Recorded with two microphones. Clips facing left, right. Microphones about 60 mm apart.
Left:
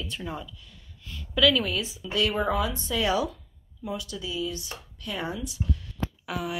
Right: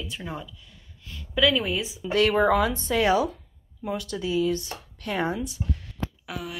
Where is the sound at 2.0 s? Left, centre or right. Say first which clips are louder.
Right 6 dB; right.